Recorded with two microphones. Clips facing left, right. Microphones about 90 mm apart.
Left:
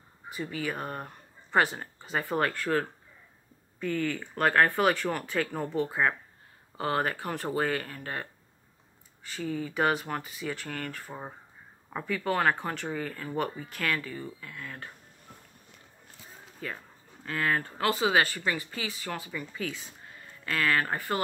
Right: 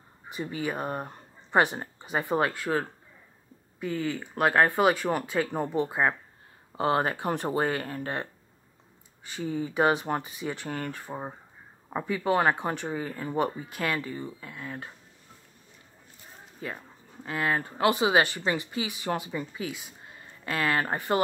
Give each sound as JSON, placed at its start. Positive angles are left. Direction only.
{"t": 0.3, "sound": "speech", "side_deg": -20}
{"t": 16.6, "sound": "speech", "side_deg": -20}